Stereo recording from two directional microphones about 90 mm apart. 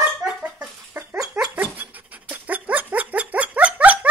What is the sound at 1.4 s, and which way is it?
Dog, 20° right (ahead or behind).